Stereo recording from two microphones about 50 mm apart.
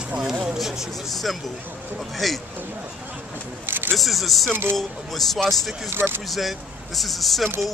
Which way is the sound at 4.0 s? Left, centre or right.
Centre.